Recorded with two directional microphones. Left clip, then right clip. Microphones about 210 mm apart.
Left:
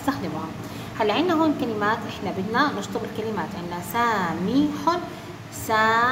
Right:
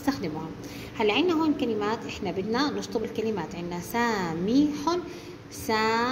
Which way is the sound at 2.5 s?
20° right (ahead or behind).